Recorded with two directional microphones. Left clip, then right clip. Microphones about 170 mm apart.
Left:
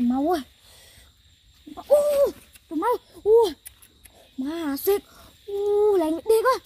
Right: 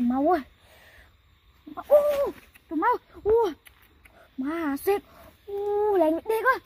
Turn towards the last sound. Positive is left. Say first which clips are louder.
# left 3 dB
turn(degrees=-15)  # may be behind; listen again after turning